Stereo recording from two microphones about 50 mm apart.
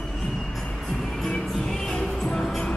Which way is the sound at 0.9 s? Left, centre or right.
Centre.